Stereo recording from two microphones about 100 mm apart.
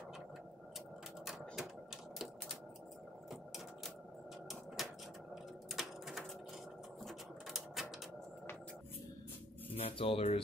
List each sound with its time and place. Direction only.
1.2 s typewriter: centre (ahead or behind)
4.8 s a sound: centre (ahead or behind)
7.0 s mechanisms: centre (ahead or behind)
9.8 s speech: 70° left (ahead or behind)